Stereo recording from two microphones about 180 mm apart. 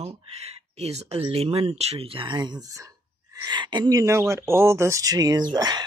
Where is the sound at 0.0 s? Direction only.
35° right (ahead or behind).